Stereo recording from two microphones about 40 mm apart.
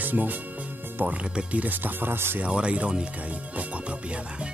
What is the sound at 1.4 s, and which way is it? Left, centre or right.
Speech, right.